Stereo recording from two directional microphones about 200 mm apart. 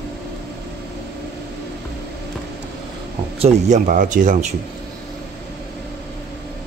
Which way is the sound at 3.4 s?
35° right (ahead or behind).